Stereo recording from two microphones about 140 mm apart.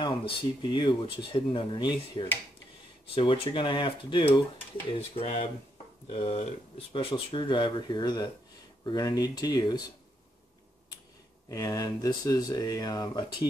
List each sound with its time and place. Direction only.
0.0 s speech: 35° left (ahead or behind)
11.4 s speech: 25° left (ahead or behind)